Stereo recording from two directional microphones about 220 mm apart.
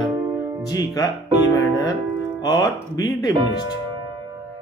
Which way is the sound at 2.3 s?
15° left (ahead or behind).